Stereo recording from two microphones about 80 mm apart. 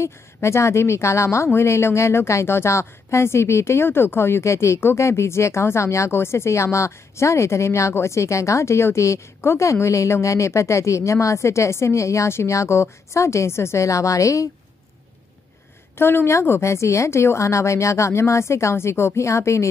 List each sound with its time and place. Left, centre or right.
0.0 s a woman's voice: left
16.0 s a woman's voice: left